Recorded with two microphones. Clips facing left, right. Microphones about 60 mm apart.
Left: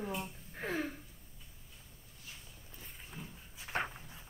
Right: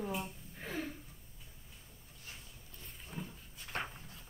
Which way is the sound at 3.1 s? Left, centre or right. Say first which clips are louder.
Right 5 dB; centre.